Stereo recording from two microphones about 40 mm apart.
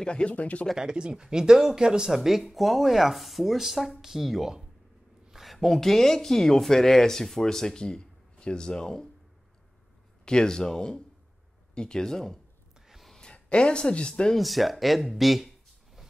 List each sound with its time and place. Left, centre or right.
0.0 s speech: left
0.7 s speech: right; by 9.1 s centre
10.2 s speech: centre
12.8 s a sound: centre
13.2 s speech: left
14.3 s speech: centre